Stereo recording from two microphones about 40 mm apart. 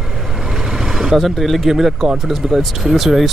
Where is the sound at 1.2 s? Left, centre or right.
Centre.